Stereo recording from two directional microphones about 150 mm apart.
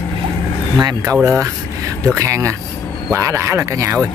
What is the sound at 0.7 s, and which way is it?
Speech, 25° right (ahead or behind).